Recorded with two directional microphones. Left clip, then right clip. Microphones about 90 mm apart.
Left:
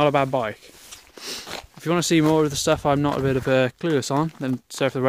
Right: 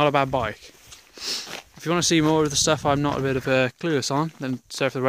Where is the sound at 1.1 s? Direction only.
5° right (ahead or behind).